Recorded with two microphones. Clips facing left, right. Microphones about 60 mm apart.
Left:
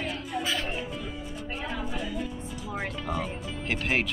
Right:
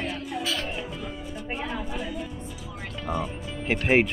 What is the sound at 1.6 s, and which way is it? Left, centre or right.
Speech, centre.